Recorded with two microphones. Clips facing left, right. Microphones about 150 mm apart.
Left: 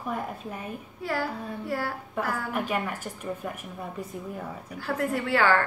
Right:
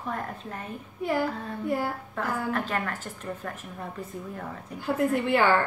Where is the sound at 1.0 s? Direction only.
20° right (ahead or behind).